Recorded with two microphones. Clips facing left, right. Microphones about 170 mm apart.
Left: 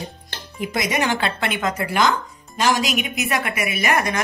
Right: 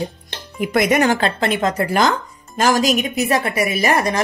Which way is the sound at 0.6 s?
55° right (ahead or behind).